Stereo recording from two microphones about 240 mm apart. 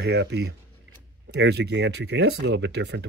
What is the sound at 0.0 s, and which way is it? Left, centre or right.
Speech, right.